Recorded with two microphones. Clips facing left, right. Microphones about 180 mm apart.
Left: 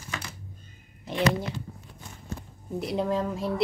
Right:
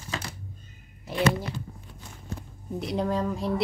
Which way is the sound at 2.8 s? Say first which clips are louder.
Even; centre (ahead or behind).